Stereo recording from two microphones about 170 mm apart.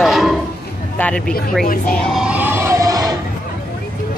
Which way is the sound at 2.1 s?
5° right (ahead or behind).